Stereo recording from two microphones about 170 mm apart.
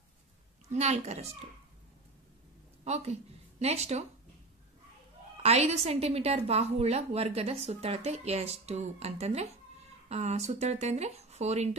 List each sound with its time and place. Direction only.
0.7 s a woman's voice: 40° right (ahead or behind)
2.8 s speech: 40° right (ahead or behind)
5.4 s a woman's voice: 40° right (ahead or behind)